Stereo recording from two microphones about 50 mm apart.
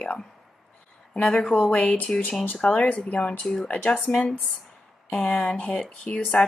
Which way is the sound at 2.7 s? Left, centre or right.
Left.